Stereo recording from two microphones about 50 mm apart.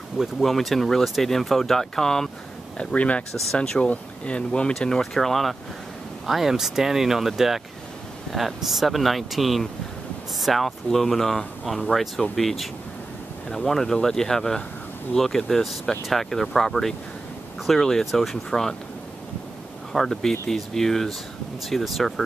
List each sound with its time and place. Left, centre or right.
0.2 s speech: centre
2.8 s speech: left; by 18.8 s centre
19.9 s speech: centre